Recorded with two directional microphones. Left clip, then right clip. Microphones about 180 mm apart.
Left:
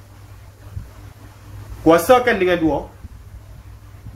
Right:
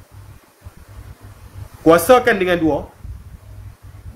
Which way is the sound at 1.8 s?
45° right (ahead or behind).